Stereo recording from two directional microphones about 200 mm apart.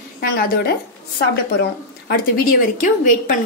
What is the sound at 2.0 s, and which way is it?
A woman's voice, 45° left (ahead or behind).